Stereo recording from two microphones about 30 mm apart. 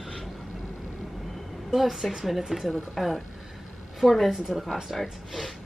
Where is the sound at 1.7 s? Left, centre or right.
Centre.